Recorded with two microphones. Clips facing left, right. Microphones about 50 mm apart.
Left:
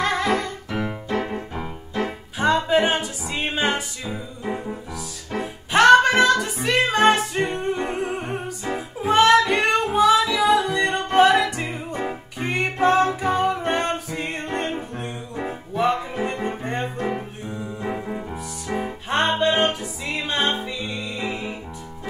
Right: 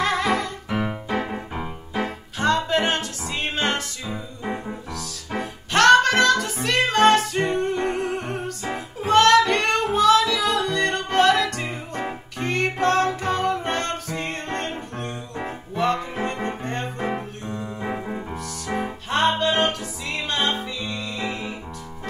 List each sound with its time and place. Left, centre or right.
0.0 s music: centre
2.3 s music: centre
5.4 s music: centre
17.5 s music: centre
19.2 s music: centre